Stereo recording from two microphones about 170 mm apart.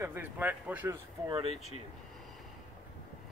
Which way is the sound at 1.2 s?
30° right (ahead or behind).